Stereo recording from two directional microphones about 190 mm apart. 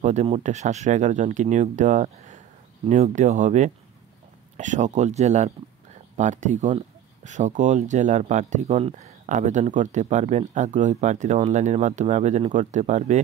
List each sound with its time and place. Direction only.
0.0 s speech: 35° right (ahead or behind)